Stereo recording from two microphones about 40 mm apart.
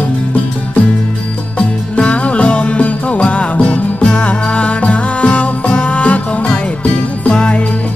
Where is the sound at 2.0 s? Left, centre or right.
Left.